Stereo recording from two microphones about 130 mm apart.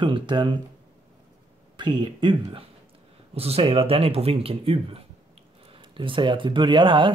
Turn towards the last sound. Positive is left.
turn(degrees=-35)  # may be behind; listen again after turning